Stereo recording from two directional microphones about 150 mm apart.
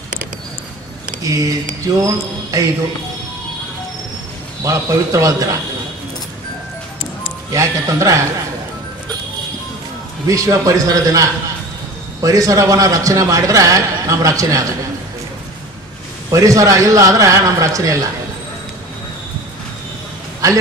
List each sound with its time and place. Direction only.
1.2 s a man's voice: 20° right (ahead or behind)
4.6 s a man's voice: 20° right (ahead or behind)
7.5 s a man's voice: 20° right (ahead or behind)
10.2 s a man's voice: 20° right (ahead or behind)
16.3 s a man's voice: 20° right (ahead or behind)